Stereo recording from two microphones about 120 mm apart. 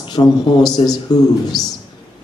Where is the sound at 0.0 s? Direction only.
40° left (ahead or behind).